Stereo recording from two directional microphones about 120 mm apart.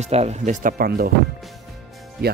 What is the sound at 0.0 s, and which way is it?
Speech, 65° right (ahead or behind).